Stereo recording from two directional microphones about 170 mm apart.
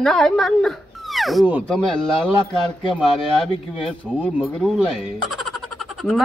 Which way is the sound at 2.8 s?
30° left (ahead or behind).